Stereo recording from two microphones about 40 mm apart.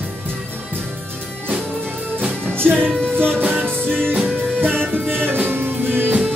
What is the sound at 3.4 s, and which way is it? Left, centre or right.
Music, right.